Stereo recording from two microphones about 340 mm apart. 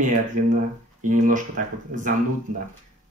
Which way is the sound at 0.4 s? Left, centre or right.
Right.